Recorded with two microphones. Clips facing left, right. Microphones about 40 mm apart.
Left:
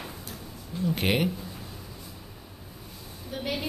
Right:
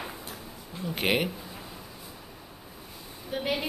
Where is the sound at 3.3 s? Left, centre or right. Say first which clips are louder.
Right 2 dB; centre.